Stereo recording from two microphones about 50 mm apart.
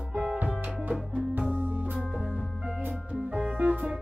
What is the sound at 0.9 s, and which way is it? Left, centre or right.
Music, right.